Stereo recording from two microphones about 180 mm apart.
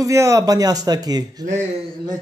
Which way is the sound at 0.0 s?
15° right (ahead or behind).